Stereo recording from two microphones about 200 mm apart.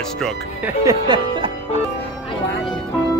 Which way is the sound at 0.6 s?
20° right (ahead or behind).